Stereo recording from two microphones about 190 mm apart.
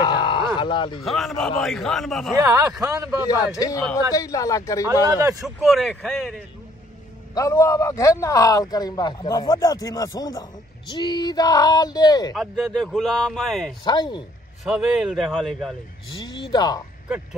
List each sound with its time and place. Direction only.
0.0 s a sound: 25° left (ahead or behind)
1.0 s a man's voice: centre (ahead or behind)
2.3 s speech: 15° right (ahead or behind)
3.3 s a man's voice: 20° left (ahead or behind)
5.0 s speech: 20° right (ahead or behind)
5.4 s a man's voice: centre (ahead or behind)
7.3 s a man's voice: 15° left (ahead or behind)
12.4 s a man's voice: centre (ahead or behind)
13.8 s speech: 20° left (ahead or behind)
14.6 s a man's voice: centre (ahead or behind)
16.3 s speech: 20° left (ahead or behind)